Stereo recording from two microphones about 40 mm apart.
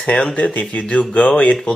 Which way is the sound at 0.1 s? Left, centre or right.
Centre.